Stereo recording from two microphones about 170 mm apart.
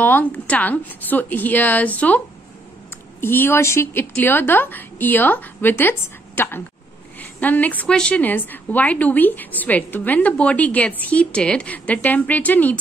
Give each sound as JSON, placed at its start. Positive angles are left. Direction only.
{"t": 0.0, "sound": "a woman's voice", "side_deg": 10}